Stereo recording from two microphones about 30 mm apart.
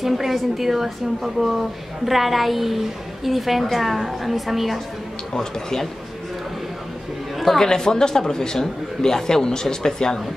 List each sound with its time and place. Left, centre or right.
0.0 s a woman's voice: centre
5.3 s speech: centre
7.5 s speech: left